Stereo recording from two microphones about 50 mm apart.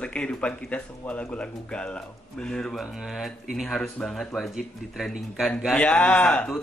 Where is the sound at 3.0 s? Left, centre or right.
Centre.